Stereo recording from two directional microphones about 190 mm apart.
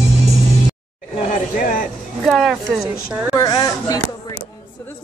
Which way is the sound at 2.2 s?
Centre (ahead or behind).